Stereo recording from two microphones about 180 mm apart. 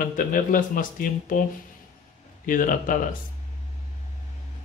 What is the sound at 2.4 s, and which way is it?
Speech, 50° left (ahead or behind).